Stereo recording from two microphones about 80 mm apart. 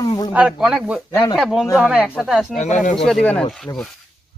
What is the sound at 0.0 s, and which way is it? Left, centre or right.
Snake, left.